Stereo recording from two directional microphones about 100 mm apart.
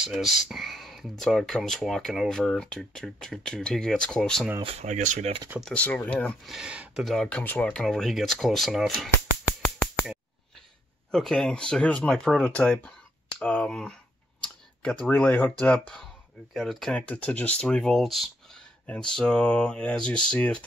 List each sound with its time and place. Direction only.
0.0 s speech: 5° right (ahead or behind)
4.6 s speech: 80° right
5.6 s speech: 10° left (ahead or behind)
6.4 s speech: 5° right (ahead or behind)
7.1 s speech: 10° left (ahead or behind)
11.1 s speech: 5° left (ahead or behind)
16.5 s speech: centre (ahead or behind)